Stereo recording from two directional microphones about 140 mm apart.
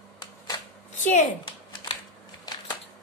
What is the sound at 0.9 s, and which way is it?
Speech, 60° left (ahead or behind).